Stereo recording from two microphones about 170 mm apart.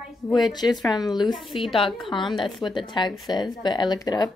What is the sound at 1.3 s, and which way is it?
Speech, centre (ahead or behind).